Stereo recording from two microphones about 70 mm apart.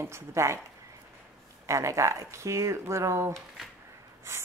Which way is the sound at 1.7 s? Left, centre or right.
Right.